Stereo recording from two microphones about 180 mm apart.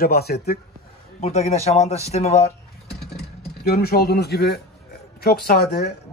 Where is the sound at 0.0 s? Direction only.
60° left (ahead or behind).